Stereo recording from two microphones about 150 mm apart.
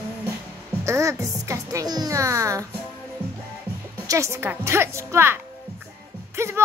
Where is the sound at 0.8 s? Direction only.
20° right (ahead or behind).